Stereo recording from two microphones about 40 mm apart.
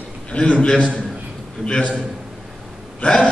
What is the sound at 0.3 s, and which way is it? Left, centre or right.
Speech, left.